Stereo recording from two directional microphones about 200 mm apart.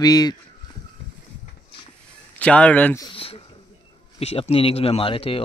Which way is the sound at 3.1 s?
30° left (ahead or behind).